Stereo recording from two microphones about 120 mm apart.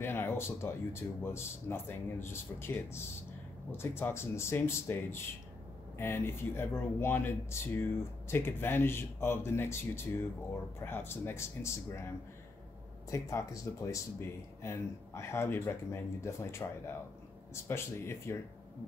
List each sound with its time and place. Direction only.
0.0 s speech: 20° left (ahead or behind)
13.1 s speech: 25° left (ahead or behind)